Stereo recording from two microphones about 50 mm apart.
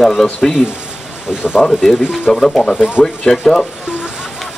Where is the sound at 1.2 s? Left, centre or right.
Centre.